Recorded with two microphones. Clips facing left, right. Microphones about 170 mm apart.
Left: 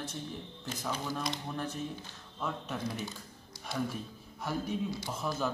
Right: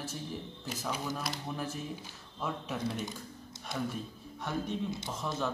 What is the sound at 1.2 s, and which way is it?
Speech, 5° right (ahead or behind).